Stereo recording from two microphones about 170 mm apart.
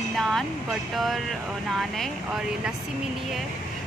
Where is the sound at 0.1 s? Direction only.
Centre (ahead or behind).